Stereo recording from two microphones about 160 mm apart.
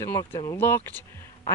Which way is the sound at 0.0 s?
20° left (ahead or behind).